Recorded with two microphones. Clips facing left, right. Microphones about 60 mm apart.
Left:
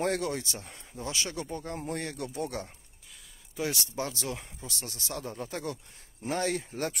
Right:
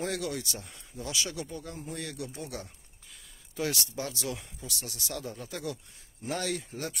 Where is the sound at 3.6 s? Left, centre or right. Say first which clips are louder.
Even; left.